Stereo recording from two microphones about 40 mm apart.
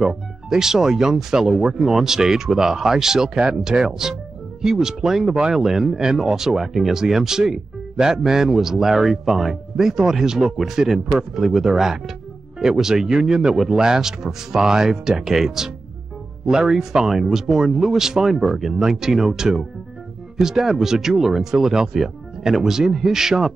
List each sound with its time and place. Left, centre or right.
0.0 s speech: centre